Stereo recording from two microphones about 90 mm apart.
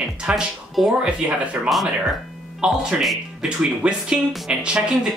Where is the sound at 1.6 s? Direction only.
15° right (ahead or behind).